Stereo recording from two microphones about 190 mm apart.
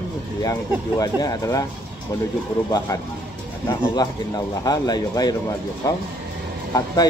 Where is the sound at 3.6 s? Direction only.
20° left (ahead or behind).